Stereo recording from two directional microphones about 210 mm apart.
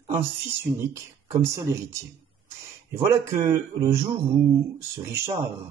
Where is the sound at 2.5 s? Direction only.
10° right (ahead or behind).